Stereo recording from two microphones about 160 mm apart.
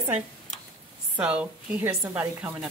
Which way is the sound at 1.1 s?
10° right (ahead or behind).